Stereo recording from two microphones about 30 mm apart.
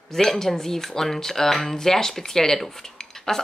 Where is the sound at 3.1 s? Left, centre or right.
Centre.